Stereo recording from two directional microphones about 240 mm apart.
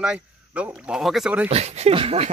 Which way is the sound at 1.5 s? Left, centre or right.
Right.